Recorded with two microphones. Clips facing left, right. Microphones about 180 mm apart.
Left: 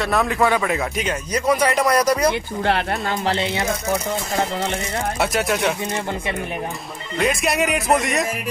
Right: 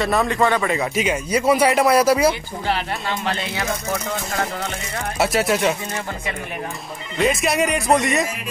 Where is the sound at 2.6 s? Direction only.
55° left (ahead or behind).